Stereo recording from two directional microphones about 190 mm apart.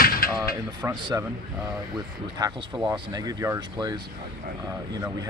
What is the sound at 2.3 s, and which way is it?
Speech, 20° right (ahead or behind).